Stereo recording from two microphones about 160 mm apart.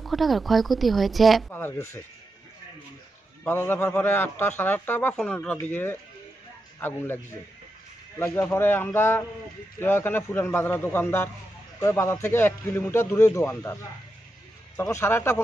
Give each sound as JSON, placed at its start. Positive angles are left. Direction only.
{"t": 0.0, "sound": "speech", "side_deg": 0}
{"t": 1.5, "sound": "a man's voice", "side_deg": 15}
{"t": 3.4, "sound": "a man's voice", "side_deg": 15}
{"t": 14.8, "sound": "a man's voice", "side_deg": 15}